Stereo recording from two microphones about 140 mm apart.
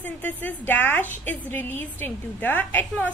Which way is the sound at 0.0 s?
10° left (ahead or behind).